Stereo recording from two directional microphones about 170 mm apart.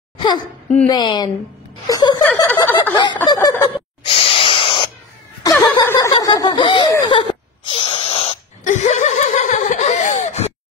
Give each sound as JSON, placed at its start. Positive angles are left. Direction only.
{"t": 0.2, "sound": "speech", "side_deg": 25}
{"t": 2.9, "sound": "speech", "side_deg": 25}
{"t": 3.7, "sound": "gasp", "side_deg": 35}
{"t": 5.4, "sound": "chuckle", "side_deg": 20}
{"t": 6.1, "sound": "a sound", "side_deg": 20}